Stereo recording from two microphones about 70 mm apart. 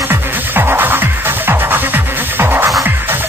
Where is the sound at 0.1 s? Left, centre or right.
Right.